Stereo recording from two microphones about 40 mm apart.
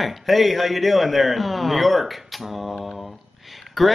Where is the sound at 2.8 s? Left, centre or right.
Centre.